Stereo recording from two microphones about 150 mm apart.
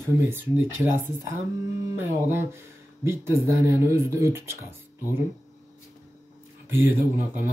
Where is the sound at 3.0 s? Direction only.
15° right (ahead or behind).